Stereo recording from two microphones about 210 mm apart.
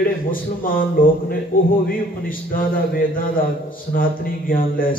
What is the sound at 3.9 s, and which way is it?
A man's voice, 40° left (ahead or behind).